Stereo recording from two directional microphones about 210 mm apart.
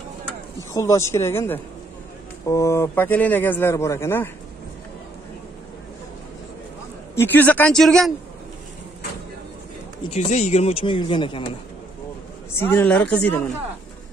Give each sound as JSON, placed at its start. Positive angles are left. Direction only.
{"t": 0.6, "sound": "a man's voice", "side_deg": 15}
{"t": 7.2, "sound": "a man's voice", "side_deg": 10}
{"t": 10.1, "sound": "speech", "side_deg": 35}
{"t": 12.5, "sound": "a man's voice", "side_deg": 10}